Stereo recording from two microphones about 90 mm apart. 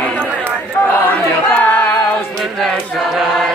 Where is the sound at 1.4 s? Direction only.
20° left (ahead or behind).